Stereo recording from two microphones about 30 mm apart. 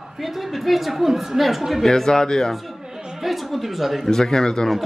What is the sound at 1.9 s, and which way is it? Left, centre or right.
Speech, centre.